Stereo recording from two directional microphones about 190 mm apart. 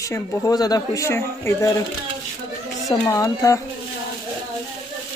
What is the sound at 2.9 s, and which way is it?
Speech, 15° left (ahead or behind).